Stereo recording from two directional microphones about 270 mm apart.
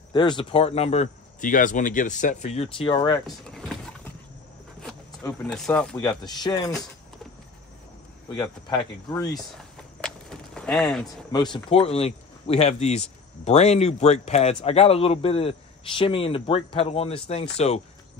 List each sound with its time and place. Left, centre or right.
0.1 s speech: centre
3.3 s power windows: centre
5.2 s speech: centre
8.3 s speech: centre
10.0 s a sound: centre
11.5 s speech: left